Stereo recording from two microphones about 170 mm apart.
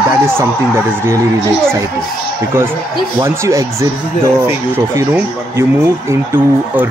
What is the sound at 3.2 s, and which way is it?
Speech, 15° right (ahead or behind).